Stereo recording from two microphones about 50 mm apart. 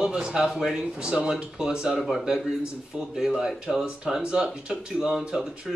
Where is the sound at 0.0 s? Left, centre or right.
Centre.